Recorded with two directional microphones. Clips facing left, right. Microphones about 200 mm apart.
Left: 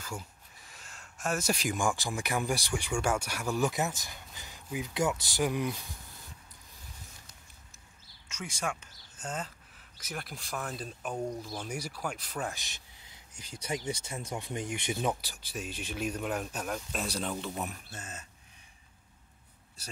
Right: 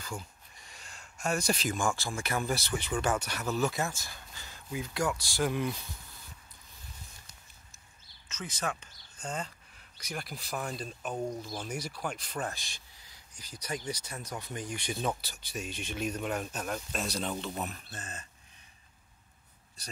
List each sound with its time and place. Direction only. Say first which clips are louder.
0.0 s speech: even; 5° left (ahead or behind)
8.3 s speech: even; 10° left (ahead or behind)
12.5 s a sound: left 1 dB; 20° left (ahead or behind)
13.8 s speech: left 2 dB; 25° left (ahead or behind); by 18.2 s 10° left (ahead or behind)